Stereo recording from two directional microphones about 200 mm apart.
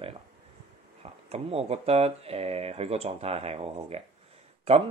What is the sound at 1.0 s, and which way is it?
Speech, 30° right (ahead or behind).